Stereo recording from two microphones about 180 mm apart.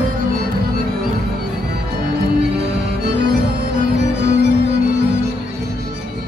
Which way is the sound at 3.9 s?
75° right (ahead or behind).